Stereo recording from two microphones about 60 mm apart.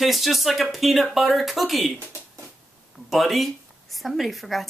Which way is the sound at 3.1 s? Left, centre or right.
Centre.